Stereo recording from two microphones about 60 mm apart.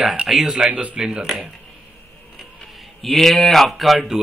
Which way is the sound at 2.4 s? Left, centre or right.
Centre.